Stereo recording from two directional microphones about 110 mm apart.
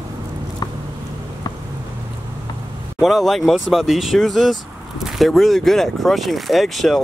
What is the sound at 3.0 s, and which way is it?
Speech, centre (ahead or behind).